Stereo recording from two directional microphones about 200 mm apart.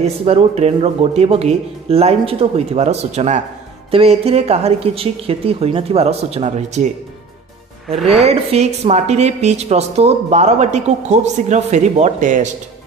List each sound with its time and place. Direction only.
0.0 s a woman's voice: 30° right (ahead or behind)
8.0 s a woman's voice: centre (ahead or behind)
8.3 s a woman's voice: 35° right (ahead or behind)